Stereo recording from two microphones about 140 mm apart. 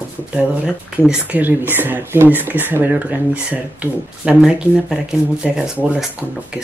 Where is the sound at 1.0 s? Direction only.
10° right (ahead or behind).